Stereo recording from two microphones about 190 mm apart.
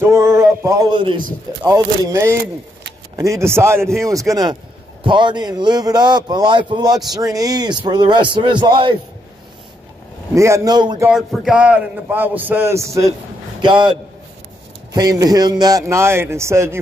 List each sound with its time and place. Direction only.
0.0 s a sound: 15° right (ahead or behind)
1.7 s a man's voice: 15° right (ahead or behind)
10.3 s a man's voice: 15° right (ahead or behind)
11.1 s a man's voice: 5° right (ahead or behind)